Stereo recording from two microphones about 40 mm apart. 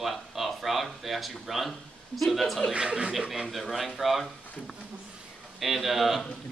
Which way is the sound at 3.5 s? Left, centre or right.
Centre.